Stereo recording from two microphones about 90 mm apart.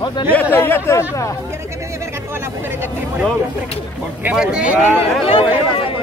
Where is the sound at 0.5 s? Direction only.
25° left (ahead or behind).